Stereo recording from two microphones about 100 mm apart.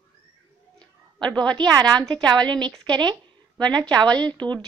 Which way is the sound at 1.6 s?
40° right (ahead or behind).